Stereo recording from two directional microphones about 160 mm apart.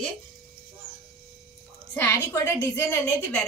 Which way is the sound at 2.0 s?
15° left (ahead or behind).